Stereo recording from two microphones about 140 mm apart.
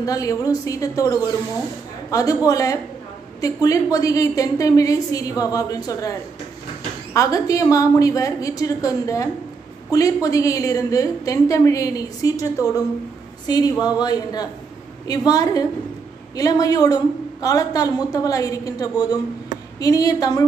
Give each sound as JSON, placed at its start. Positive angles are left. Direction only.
{"t": 0.0, "sound": "a woman's voice", "side_deg": 25}
{"t": 7.2, "sound": "a woman's voice", "side_deg": 25}